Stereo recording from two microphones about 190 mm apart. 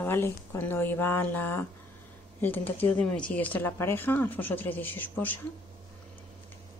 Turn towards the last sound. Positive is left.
turn(degrees=10)  # may be behind; listen again after turning